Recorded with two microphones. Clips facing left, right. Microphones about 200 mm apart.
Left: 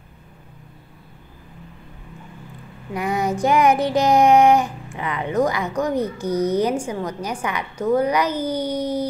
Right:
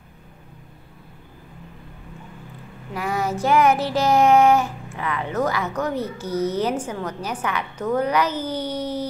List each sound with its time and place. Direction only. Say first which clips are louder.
2.9 s child singing: left 2 dB; 20° left (ahead or behind)